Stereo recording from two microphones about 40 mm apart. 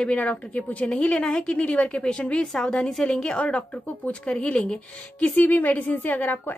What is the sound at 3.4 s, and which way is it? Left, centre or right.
Speech, left.